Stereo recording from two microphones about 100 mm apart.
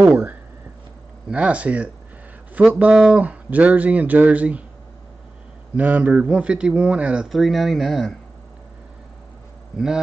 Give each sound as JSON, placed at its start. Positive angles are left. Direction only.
{"t": 0.0, "sound": "speech", "side_deg": -20}
{"t": 5.8, "sound": "speech", "side_deg": -15}
{"t": 7.2, "sound": "speech", "side_deg": 0}